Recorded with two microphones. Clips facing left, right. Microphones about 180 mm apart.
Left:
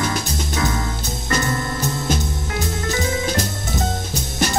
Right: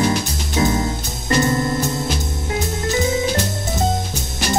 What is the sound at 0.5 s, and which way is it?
Music, 25° right (ahead or behind).